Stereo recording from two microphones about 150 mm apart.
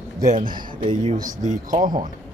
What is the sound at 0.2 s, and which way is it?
Speech, 60° right (ahead or behind).